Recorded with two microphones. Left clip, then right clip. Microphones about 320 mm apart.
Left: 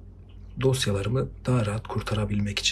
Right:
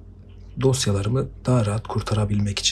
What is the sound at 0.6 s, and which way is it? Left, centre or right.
Speech, centre.